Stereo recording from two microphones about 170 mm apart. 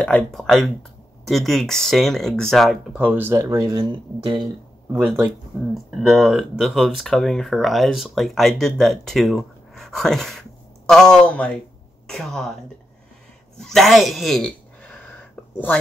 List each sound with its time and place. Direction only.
0.0 s speech: 5° left (ahead or behind); by 4.4 s 25° right (ahead or behind)
4.9 s speech: 5° right (ahead or behind)
13.6 s a sound: centre (ahead or behind)